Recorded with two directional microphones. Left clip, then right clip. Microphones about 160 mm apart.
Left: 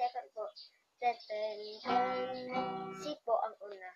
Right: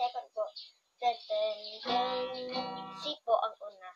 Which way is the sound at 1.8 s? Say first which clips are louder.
Right 1 dB; 30° right (ahead or behind).